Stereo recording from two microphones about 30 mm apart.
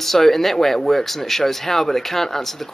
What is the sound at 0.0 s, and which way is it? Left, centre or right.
Speech, centre.